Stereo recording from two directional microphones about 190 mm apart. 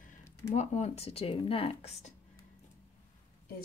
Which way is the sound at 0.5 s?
35° left (ahead or behind).